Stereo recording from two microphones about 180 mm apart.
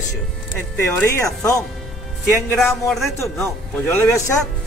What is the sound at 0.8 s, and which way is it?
Speech, 15° left (ahead or behind).